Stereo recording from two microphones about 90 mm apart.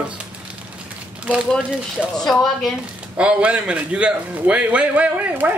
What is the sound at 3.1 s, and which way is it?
A man's voice, 15° right (ahead or behind).